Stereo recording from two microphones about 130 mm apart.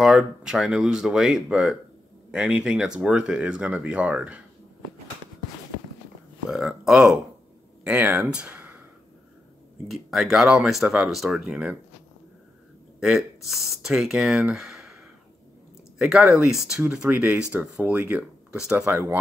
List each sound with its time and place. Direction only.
0.0 s speech: 5° right (ahead or behind)
6.5 s speech: 5° right (ahead or behind)
9.8 s speech: centre (ahead or behind)
13.0 s speech: 5° right (ahead or behind)
16.0 s speech: centre (ahead or behind)
18.9 s speech: 20° right (ahead or behind)